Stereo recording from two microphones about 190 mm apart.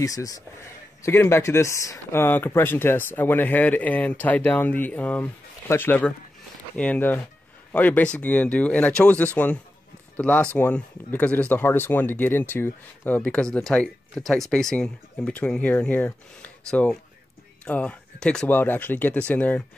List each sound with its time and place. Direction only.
0.0 s speech: 20° left (ahead or behind)